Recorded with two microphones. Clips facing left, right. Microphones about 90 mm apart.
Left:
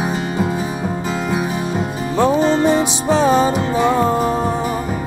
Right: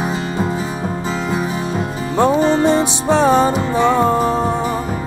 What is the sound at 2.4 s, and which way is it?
Music, 35° right (ahead or behind).